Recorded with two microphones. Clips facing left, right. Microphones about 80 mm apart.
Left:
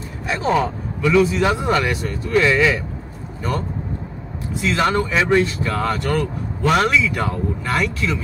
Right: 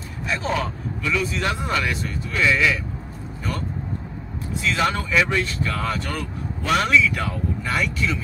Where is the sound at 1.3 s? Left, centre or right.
Centre.